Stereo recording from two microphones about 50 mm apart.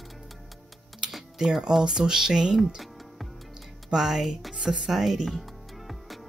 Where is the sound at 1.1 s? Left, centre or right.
Centre.